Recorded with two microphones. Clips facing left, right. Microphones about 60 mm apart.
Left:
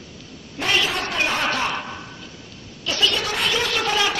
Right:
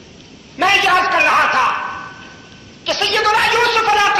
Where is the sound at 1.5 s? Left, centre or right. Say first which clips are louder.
Right 9 dB; right.